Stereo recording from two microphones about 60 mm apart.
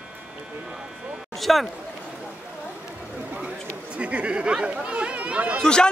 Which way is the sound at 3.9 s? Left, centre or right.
Right.